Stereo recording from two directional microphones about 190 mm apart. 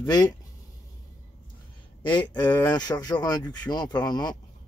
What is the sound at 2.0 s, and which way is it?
Speech, 25° left (ahead or behind).